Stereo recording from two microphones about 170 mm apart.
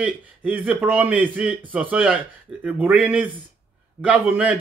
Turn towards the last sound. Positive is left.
turn(degrees=-10)  # may be behind; listen again after turning